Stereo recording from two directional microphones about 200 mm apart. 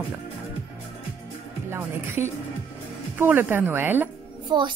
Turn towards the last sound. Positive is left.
turn(degrees=-25)  # may be behind; listen again after turning